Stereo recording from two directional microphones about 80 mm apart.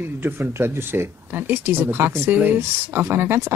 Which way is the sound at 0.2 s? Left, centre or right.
Right.